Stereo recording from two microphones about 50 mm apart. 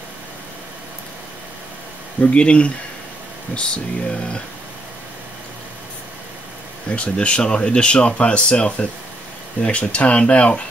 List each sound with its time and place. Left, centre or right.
2.3 s speech: left
6.9 s speech: left